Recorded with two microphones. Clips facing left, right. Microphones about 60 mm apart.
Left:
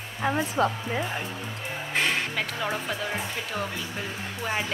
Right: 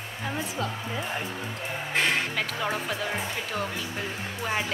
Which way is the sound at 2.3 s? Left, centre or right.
Centre.